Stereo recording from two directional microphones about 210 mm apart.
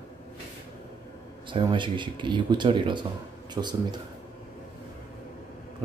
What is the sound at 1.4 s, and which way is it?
Speech, 25° right (ahead or behind).